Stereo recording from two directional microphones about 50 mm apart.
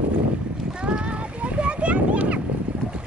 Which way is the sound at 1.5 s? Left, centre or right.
Right.